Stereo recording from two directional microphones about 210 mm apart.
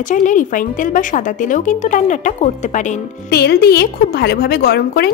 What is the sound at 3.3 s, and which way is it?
A woman's voice, 50° left (ahead or behind).